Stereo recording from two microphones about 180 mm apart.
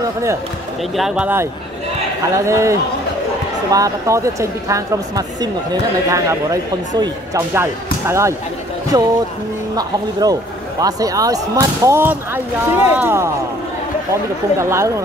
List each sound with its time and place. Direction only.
0.0 s speech: 15° right (ahead or behind)
0.9 s speech: 5° right (ahead or behind); by 9.1 s 20° right (ahead or behind)
10.8 s speech: 20° right (ahead or behind)
14.6 s speech: 15° right (ahead or behind)